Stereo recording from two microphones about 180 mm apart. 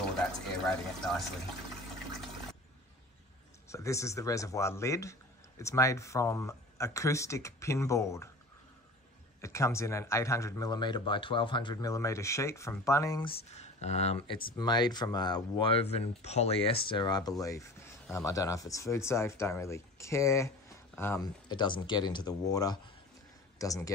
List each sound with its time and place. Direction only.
0.7 s speech: centre (ahead or behind)
3.6 s speech: 15° left (ahead or behind)
9.4 s speech: 15° left (ahead or behind); by 14.4 s 35° left (ahead or behind)
14.6 s speech: 25° left (ahead or behind)
21.5 s speech: 25° left (ahead or behind)